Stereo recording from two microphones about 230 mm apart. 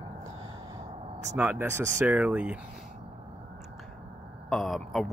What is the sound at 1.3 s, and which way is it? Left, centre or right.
Speech, centre.